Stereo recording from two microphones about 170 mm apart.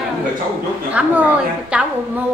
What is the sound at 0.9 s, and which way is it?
Speech, 10° right (ahead or behind).